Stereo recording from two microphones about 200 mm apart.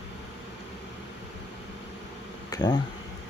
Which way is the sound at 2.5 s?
20° left (ahead or behind).